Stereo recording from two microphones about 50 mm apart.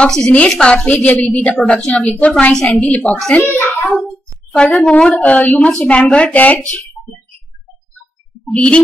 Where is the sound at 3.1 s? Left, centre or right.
Centre.